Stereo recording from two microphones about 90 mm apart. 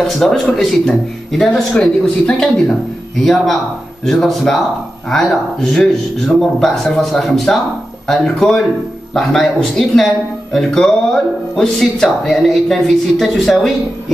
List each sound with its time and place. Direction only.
0.0 s speech: 5° left (ahead or behind)